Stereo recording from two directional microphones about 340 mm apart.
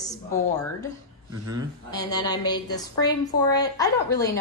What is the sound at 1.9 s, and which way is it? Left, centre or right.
A woman's voice, centre.